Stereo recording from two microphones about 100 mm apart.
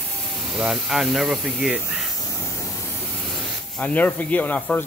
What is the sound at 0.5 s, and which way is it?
Speech, 5° right (ahead or behind).